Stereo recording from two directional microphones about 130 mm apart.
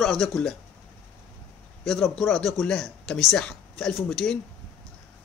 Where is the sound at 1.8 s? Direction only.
5° left (ahead or behind).